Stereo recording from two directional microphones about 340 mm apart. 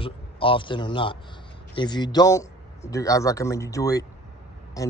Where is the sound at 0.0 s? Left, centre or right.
Centre.